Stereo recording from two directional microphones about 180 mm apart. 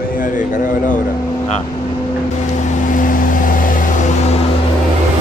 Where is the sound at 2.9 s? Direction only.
50° left (ahead or behind).